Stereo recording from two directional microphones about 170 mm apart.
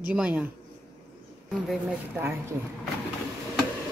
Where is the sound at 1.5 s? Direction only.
Centre (ahead or behind).